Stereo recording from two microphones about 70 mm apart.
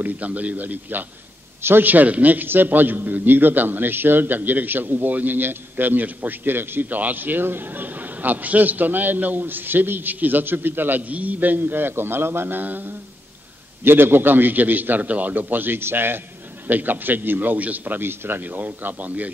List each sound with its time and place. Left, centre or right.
0.0 s a man's voice: right